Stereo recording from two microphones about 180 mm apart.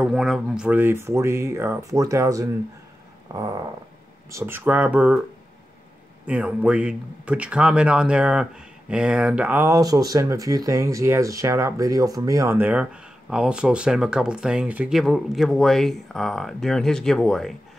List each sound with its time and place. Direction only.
0.0 s speech: 5° right (ahead or behind)
3.3 s dog: 20° right (ahead or behind)
4.3 s speech: 15° right (ahead or behind)
6.2 s speech: 5° right (ahead or behind)